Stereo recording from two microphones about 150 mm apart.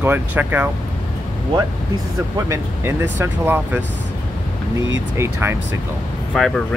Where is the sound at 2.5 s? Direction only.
15° right (ahead or behind).